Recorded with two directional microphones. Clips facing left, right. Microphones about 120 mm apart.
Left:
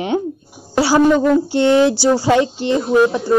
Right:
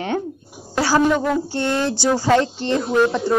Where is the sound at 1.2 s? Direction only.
15° left (ahead or behind).